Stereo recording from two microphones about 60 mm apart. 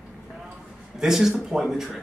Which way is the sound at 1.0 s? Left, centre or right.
Centre.